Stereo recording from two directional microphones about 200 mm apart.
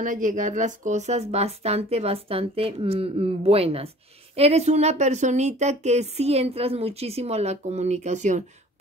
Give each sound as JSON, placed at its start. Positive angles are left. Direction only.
{"t": 0.0, "sound": "a woman's voice", "side_deg": -40}